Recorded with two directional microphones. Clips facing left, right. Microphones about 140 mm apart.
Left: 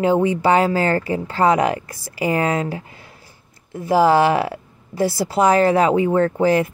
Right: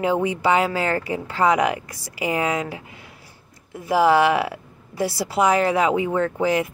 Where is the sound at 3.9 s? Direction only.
35° left (ahead or behind).